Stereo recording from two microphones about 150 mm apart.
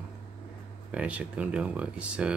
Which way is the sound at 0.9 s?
10° right (ahead or behind).